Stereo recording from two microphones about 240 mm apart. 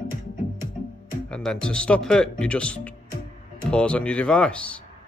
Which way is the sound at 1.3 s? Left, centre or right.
Centre.